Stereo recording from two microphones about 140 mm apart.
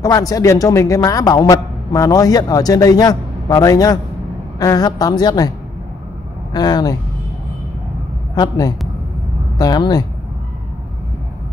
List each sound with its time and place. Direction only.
0.0 s a man's voice: 25° left (ahead or behind)
6.5 s a man's voice: 30° left (ahead or behind)
8.4 s a man's voice: 25° left (ahead or behind)